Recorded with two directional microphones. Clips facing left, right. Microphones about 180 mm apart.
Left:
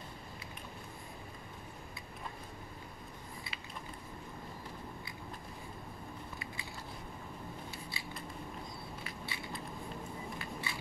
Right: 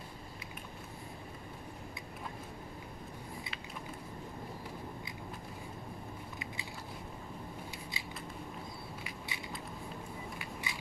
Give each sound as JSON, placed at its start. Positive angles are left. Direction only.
{"t": 8.0, "sound": "scissors", "side_deg": -20}
{"t": 9.0, "sound": "crushing", "side_deg": -15}
{"t": 10.4, "sound": "vehicle", "side_deg": -15}